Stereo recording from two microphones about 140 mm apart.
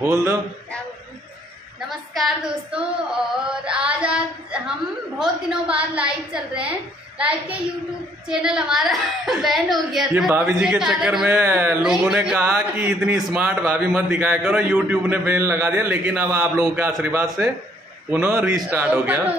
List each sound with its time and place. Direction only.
0.0 s a man's voice: 15° right (ahead or behind)
1.8 s female singing: centre (ahead or behind)
5.2 s a man's voice: 5° right (ahead or behind)
8.3 s female singing: 5° right (ahead or behind)
10.3 s a man's voice: 10° right (ahead or behind)